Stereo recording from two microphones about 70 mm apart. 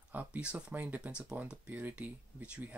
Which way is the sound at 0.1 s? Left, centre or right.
Right.